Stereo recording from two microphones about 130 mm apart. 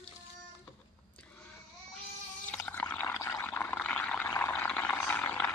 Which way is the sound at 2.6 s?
15° left (ahead or behind).